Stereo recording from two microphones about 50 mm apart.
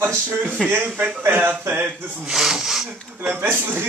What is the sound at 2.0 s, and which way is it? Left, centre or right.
Speech, right.